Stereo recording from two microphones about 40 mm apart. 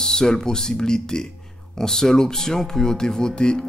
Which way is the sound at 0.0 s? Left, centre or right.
Centre.